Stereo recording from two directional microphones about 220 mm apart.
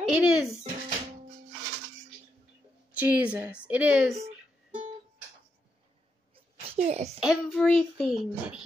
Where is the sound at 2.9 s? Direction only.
10° right (ahead or behind).